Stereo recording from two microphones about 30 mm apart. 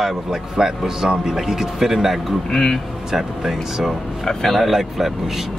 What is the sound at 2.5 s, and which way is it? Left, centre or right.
Speech, centre.